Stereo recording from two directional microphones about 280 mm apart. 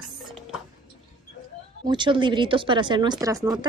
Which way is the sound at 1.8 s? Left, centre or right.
Centre.